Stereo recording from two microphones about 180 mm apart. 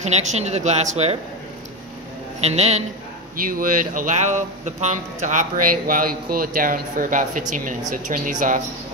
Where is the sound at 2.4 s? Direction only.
35° right (ahead or behind).